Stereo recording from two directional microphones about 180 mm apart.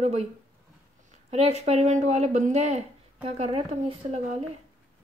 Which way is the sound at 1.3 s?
35° right (ahead or behind).